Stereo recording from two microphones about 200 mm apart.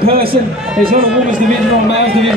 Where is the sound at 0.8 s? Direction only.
45° right (ahead or behind).